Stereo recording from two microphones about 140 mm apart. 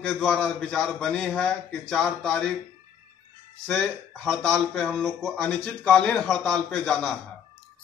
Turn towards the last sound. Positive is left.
turn(degrees=5)  # may be behind; listen again after turning